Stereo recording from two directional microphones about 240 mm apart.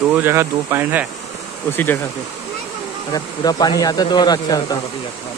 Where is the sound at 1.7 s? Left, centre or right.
Centre.